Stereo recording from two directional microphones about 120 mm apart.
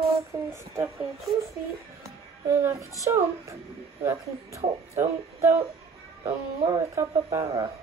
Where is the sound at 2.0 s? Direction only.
25° right (ahead or behind).